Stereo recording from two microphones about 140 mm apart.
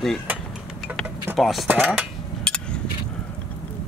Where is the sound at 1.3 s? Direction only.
Centre (ahead or behind).